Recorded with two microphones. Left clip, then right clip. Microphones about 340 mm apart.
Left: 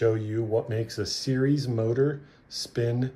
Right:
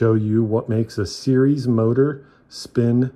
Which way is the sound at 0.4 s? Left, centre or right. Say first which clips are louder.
Right 6 dB; right.